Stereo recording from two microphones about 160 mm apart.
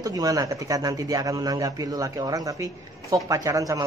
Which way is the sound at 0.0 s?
20° right (ahead or behind).